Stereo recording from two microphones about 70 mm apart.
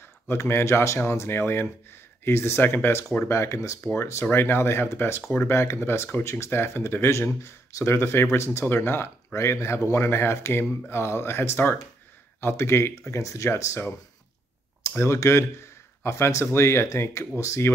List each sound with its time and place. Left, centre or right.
0.3 s speech: left
3.9 s speech: left
15.0 s speech: left